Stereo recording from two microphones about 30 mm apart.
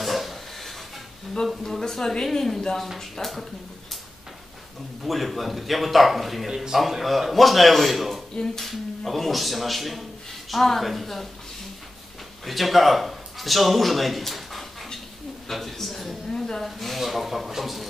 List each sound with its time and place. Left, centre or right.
0.0 s a sound: centre
1.6 s a woman's voice: centre
3.2 s speech: left
5.0 s speech: centre
6.4 s a man's voice: centre
7.0 s speech: centre
12.4 s speech: centre
16.3 s speech: centre
16.6 s speech: centre